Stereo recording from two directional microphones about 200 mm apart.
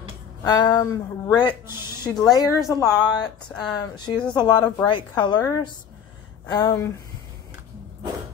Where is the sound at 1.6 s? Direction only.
10° right (ahead or behind).